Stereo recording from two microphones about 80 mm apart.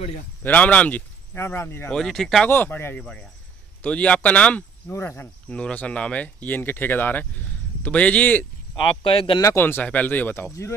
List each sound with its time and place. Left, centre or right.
0.4 s speech: left
1.3 s speech: left
1.9 s speech: centre
2.5 s speech: left
3.0 s a man's voice: centre
4.9 s speech: left
5.5 s a man's voice: centre
9.0 s speech: left
9.6 s speech: left